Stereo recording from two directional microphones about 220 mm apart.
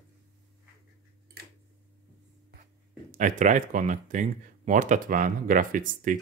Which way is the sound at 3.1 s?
35° right (ahead or behind).